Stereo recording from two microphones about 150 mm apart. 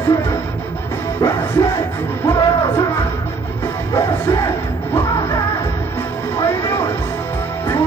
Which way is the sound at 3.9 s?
20° left (ahead or behind).